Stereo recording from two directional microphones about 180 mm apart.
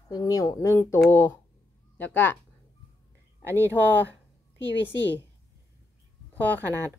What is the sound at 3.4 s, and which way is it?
Speech, 15° right (ahead or behind).